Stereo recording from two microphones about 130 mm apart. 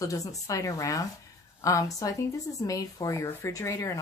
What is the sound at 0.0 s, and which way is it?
Speech, 25° left (ahead or behind).